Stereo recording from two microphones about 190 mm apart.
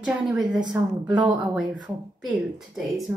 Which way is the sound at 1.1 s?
25° right (ahead or behind).